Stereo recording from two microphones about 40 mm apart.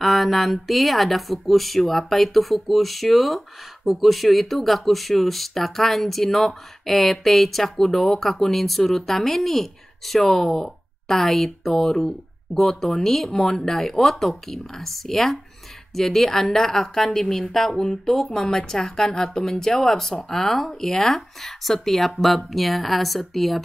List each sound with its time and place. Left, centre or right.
0.0 s a woman's voice: centre